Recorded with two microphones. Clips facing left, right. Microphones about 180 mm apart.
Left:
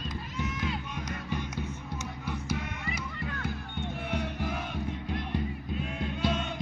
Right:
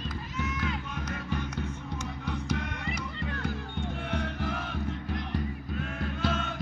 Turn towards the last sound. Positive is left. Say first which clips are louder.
# even
turn(degrees=15)  # may be behind; listen again after turning